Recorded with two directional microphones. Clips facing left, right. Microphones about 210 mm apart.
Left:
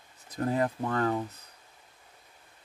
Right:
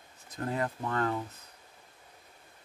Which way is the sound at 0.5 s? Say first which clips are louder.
Left 3 dB; 25° left (ahead or behind).